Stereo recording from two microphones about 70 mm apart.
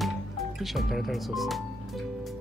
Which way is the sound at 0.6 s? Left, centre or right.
Centre.